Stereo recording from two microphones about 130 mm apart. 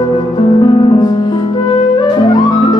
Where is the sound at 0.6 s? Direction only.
40° left (ahead or behind).